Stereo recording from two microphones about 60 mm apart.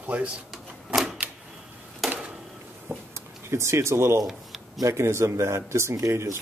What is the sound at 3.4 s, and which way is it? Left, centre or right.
Speech, right.